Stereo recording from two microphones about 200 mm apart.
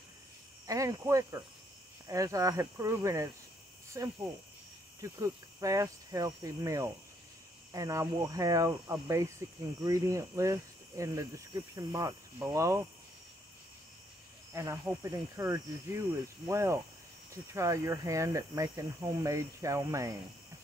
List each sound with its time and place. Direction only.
0.7 s speech: 15° right (ahead or behind)
14.5 s speech: 15° right (ahead or behind)